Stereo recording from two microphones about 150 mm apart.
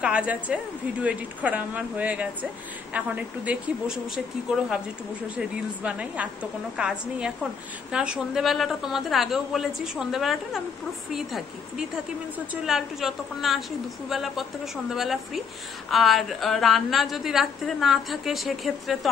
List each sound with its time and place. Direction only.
0.0 s a woman's voice: 10° right (ahead or behind)
5.3 s a woman's voice: 10° right (ahead or behind)